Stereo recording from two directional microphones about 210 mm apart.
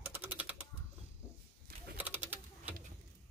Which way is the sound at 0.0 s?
10° right (ahead or behind).